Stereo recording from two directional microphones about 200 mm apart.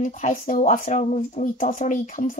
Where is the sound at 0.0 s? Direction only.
40° left (ahead or behind).